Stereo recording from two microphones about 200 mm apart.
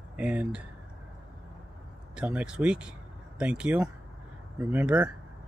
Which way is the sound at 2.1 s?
5° right (ahead or behind).